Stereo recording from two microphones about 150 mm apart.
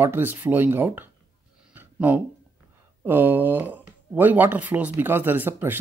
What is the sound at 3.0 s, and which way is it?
Speech, 15° right (ahead or behind).